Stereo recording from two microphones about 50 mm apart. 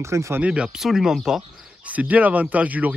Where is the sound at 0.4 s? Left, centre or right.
Right.